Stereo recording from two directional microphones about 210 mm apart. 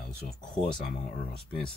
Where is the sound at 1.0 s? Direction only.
35° left (ahead or behind).